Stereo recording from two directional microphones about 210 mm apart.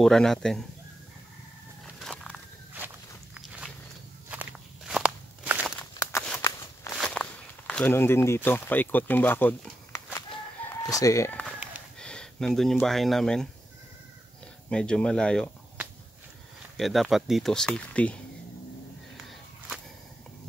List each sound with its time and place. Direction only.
0.0 s speech: centre (ahead or behind)
2.0 s walk: centre (ahead or behind)
4.3 s walk: 5° right (ahead or behind)
6.1 s a sound: 5° left (ahead or behind)
6.4 s walk: 15° left (ahead or behind)
7.0 s speech: 5° left (ahead or behind)
14.7 s speech: 5° left (ahead or behind)
16.7 s speech: centre (ahead or behind)